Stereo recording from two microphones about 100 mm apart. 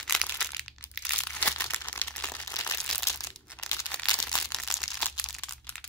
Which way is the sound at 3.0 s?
30° left (ahead or behind).